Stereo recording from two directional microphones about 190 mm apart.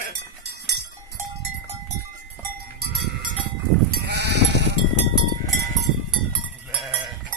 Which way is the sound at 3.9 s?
60° right (ahead or behind).